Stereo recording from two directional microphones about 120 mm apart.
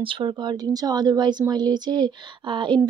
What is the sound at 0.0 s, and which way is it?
A woman's voice, 45° right (ahead or behind).